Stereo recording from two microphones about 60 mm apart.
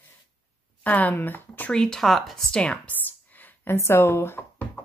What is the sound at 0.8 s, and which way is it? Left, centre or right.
Speech, left.